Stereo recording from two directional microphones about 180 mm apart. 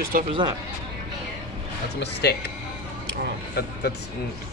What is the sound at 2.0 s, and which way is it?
Speech, 65° left (ahead or behind).